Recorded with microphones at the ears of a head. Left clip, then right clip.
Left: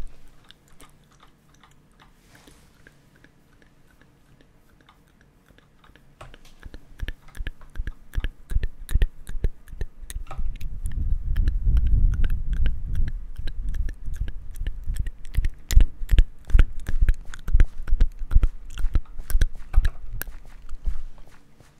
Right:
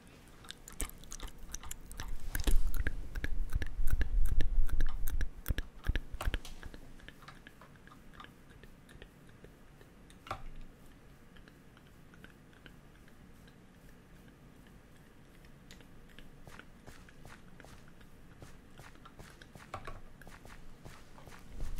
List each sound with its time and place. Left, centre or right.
0.7 s chewing: right
6.7 s chewing: left